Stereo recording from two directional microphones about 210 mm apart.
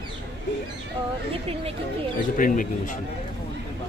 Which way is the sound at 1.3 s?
25° right (ahead or behind).